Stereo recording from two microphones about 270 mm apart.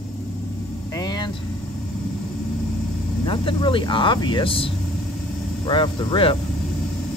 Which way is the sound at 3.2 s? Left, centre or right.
Centre.